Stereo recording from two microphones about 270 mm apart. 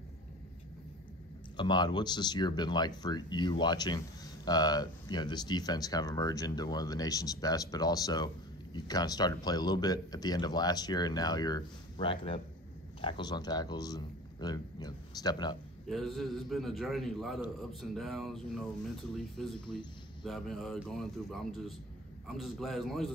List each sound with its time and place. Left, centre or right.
1.6 s speech: centre
15.9 s a man's voice: centre